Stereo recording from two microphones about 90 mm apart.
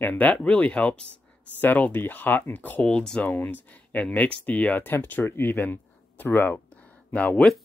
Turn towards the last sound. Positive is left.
turn(degrees=10)  # may be behind; listen again after turning